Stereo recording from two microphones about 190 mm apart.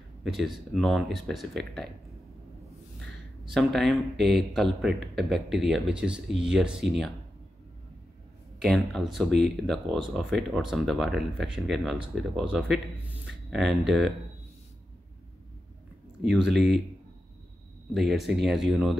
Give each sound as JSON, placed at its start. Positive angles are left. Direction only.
{"t": 0.2, "sound": "speech", "side_deg": 0}
{"t": 3.5, "sound": "speech", "side_deg": 0}
{"t": 8.5, "sound": "speech", "side_deg": 0}
{"t": 16.2, "sound": "speech", "side_deg": 0}
{"t": 17.9, "sound": "speech", "side_deg": 0}